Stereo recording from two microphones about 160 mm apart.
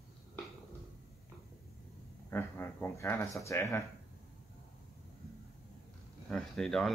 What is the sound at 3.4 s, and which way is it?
Speech, 15° left (ahead or behind).